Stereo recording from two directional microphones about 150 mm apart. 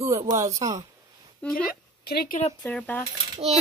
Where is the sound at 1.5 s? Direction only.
90° left.